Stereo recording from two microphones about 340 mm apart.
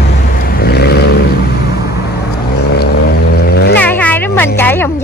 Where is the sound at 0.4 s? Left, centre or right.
Left.